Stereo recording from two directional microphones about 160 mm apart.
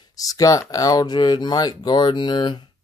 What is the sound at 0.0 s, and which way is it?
Speech, 20° left (ahead or behind).